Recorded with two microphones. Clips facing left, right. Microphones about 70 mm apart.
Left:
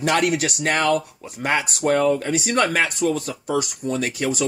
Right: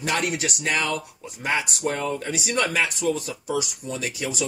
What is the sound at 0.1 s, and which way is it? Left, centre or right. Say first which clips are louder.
Speech: left 5 dB; left.